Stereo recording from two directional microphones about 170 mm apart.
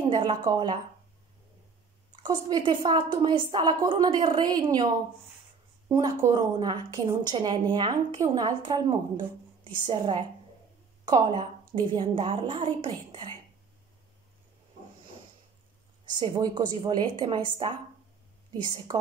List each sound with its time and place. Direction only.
0.2 s a woman's voice: 25° right (ahead or behind)
2.2 s a woman's voice: 25° right (ahead or behind)
5.9 s a woman's voice: 20° right (ahead or behind)
16.1 s a woman's voice: 25° right (ahead or behind)